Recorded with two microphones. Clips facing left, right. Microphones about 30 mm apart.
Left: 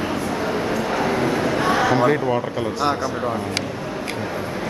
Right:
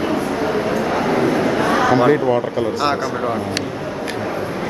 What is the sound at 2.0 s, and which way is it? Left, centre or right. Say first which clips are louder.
Speech: right 4 dB; centre.